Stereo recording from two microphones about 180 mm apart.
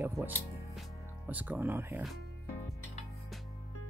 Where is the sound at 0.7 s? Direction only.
5° right (ahead or behind).